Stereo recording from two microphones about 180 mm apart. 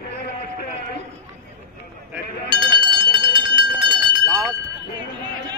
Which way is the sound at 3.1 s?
25° right (ahead or behind).